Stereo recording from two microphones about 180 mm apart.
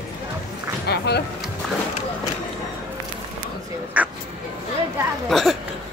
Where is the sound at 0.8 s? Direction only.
65° left (ahead or behind).